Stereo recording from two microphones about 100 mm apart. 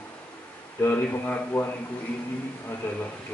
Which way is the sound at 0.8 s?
20° left (ahead or behind).